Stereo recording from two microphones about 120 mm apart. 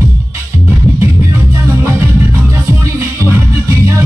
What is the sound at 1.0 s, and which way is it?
Music, 25° right (ahead or behind).